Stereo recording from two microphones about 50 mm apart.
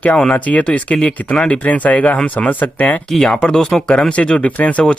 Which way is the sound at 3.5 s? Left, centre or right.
Centre.